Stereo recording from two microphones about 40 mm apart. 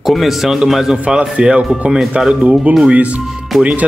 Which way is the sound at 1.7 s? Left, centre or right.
Centre.